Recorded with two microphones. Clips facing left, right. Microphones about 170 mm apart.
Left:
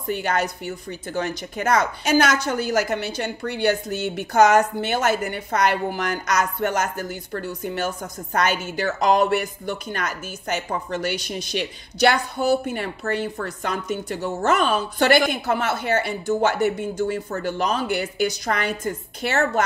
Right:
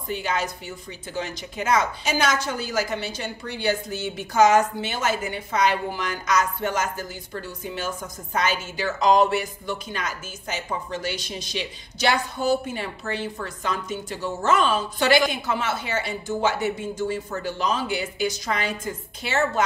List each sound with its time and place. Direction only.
0.1 s speech: 60° left (ahead or behind)